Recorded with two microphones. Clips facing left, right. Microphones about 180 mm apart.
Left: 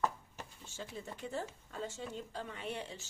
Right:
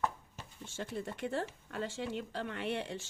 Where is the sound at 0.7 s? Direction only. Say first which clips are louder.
Right 6 dB; 65° right (ahead or behind).